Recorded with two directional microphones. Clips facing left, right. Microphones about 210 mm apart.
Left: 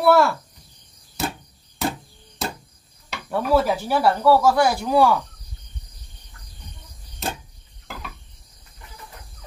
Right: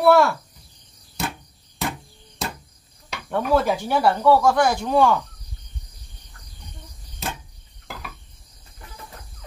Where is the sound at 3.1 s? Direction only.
5° left (ahead or behind).